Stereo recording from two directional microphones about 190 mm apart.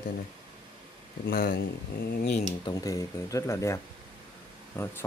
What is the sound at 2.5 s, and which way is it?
Speech, 20° left (ahead or behind).